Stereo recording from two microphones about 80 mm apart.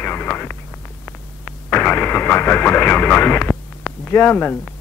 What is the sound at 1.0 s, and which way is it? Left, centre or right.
A woman's voice, left.